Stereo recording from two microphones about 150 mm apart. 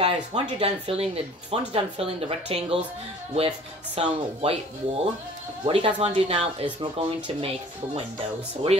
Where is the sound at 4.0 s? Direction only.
40° right (ahead or behind).